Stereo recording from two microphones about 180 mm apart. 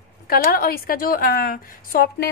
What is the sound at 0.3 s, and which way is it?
A woman's voice, 55° left (ahead or behind).